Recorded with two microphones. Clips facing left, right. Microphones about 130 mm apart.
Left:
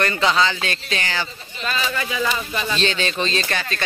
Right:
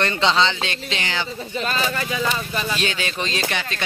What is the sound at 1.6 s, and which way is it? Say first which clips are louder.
Speech: even; 40° right (ahead or behind).